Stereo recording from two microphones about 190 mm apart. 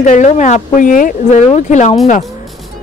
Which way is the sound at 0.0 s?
40° left (ahead or behind).